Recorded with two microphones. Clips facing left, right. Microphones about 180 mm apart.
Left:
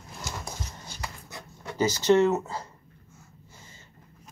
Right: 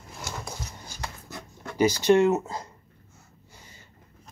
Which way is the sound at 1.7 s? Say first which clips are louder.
Right 2 dB; 10° right (ahead or behind).